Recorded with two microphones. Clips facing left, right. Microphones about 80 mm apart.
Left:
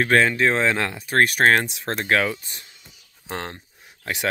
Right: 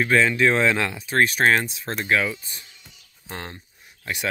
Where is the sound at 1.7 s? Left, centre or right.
Left.